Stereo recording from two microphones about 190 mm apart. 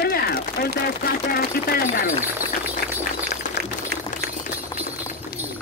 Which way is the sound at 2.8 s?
55° left (ahead or behind).